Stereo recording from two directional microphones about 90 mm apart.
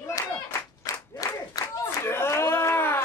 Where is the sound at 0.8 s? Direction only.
40° left (ahead or behind).